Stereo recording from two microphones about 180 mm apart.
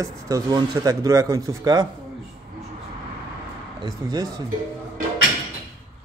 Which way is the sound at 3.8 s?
25° right (ahead or behind).